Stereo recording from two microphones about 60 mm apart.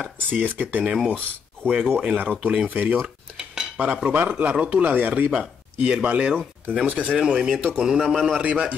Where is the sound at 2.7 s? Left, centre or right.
Right; by 8.2 s centre.